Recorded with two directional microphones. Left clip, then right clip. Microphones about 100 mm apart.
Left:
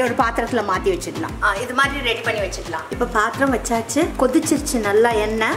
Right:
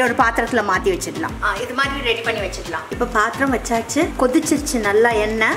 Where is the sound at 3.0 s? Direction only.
Centre (ahead or behind).